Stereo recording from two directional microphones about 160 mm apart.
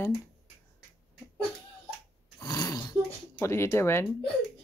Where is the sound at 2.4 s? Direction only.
25° left (ahead or behind).